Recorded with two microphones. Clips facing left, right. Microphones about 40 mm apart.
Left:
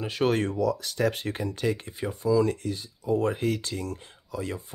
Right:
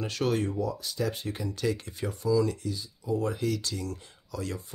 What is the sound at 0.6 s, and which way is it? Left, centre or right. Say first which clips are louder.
Speech: left 5 dB; left.